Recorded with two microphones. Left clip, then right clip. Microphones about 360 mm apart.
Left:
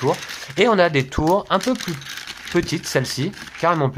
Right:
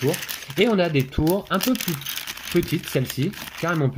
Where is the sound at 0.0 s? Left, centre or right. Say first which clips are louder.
Left 3 dB; left.